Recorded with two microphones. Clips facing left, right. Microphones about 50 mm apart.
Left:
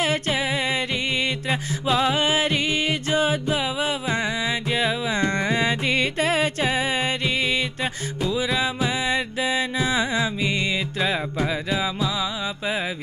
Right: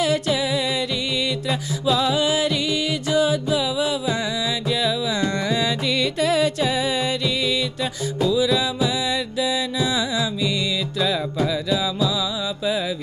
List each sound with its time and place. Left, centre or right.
0.0 s music: left